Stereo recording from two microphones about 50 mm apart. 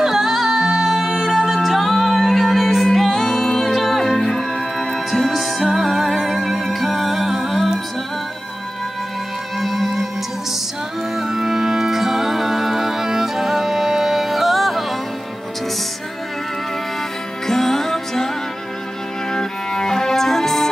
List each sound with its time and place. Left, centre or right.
0.0 s music: centre
9.6 s music: centre
11.1 s music: centre
17.5 s music: centre
19.3 s music: centre